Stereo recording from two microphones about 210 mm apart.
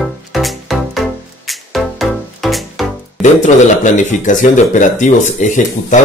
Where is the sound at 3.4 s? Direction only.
35° left (ahead or behind).